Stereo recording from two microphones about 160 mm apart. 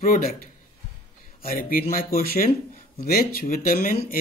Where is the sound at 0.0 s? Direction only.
60° left (ahead or behind).